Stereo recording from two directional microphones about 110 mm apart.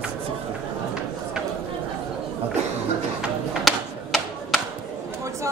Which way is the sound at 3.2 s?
Centre (ahead or behind).